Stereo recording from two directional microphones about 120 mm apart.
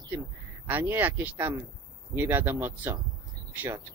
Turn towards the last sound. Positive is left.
turn(degrees=-15)  # may be behind; listen again after turning